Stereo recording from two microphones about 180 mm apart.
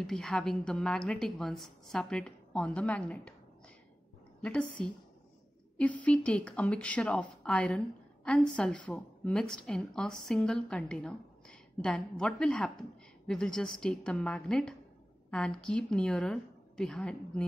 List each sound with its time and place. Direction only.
0.0 s speech: 5° left (ahead or behind)
4.4 s speech: 5° left (ahead or behind)